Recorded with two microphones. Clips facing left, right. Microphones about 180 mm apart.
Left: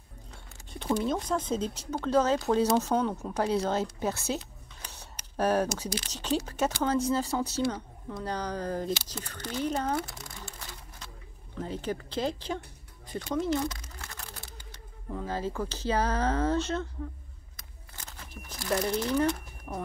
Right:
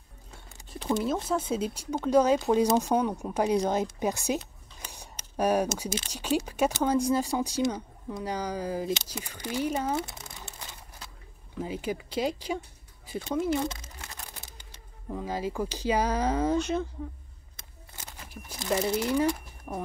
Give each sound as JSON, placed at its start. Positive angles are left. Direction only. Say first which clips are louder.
{"t": 1.0, "sound": "speech", "louder": "right 1 dB", "side_deg": -5}
{"t": 9.9, "sound": "crumpling", "louder": "right 1 dB", "side_deg": -20}
{"t": 11.5, "sound": "speech", "louder": "right 1 dB", "side_deg": -10}
{"t": 13.7, "sound": "a sound", "louder": "even", "side_deg": -20}
{"t": 15.0, "sound": "speech", "louder": "right 1 dB", "side_deg": -10}
{"t": 18.0, "sound": "a sound", "louder": "right 1 dB", "side_deg": -10}
{"t": 18.6, "sound": "speech", "louder": "right 1 dB", "side_deg": -15}